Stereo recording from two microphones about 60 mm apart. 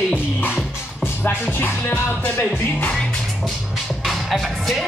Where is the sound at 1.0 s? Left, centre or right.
Left.